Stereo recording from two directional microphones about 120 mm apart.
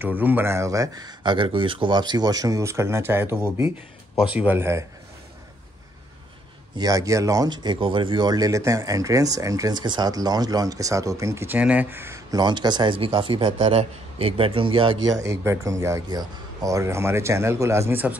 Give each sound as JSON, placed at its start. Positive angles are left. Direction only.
{"t": 0.0, "sound": "speech", "side_deg": -15}
{"t": 6.8, "sound": "speech", "side_deg": -30}
{"t": 12.4, "sound": "speech", "side_deg": -35}
{"t": 13.7, "sound": "a man's voice", "side_deg": -55}
{"t": 15.0, "sound": "speech", "side_deg": -25}